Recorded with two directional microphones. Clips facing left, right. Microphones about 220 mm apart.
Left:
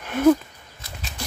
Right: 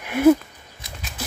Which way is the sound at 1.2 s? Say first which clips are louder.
Right 2 dB; 5° right (ahead or behind).